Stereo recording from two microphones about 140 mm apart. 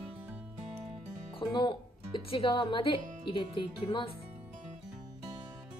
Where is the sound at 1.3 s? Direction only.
35° left (ahead or behind).